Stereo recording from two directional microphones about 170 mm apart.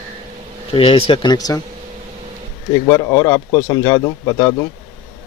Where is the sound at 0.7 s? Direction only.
35° left (ahead or behind).